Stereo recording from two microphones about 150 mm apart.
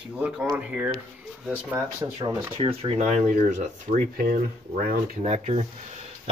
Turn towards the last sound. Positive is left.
turn(degrees=-45)  # may be behind; listen again after turning